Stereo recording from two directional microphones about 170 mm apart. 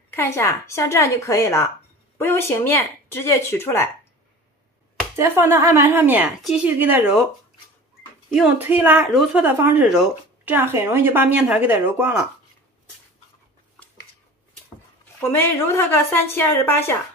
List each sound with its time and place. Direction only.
0.1 s a woman's voice: 15° left (ahead or behind)
5.1 s speech: 15° right (ahead or behind)
8.4 s speech: 10° right (ahead or behind)
9.8 s speech: centre (ahead or behind)
10.5 s speech: 15° right (ahead or behind)
15.1 s a woman's voice: 15° left (ahead or behind)